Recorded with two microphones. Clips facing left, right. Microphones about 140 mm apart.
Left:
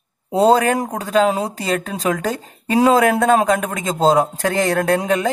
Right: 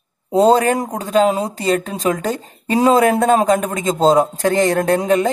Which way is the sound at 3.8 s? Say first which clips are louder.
Right 2 dB; 5° left (ahead or behind).